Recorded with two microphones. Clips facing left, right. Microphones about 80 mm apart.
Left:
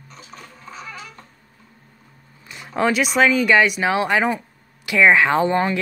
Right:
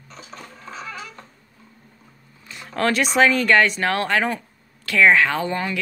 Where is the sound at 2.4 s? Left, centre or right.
Centre.